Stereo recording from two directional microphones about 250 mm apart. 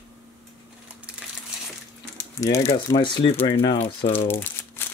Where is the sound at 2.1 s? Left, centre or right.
Centre.